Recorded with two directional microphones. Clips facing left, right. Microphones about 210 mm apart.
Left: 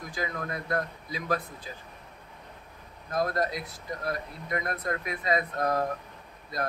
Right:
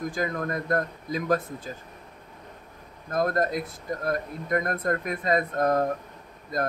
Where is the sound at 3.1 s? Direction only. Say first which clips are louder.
Right 3 dB; 50° right (ahead or behind).